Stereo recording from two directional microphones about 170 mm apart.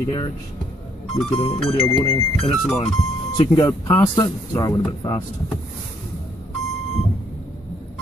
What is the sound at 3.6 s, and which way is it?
Speech, 15° left (ahead or behind).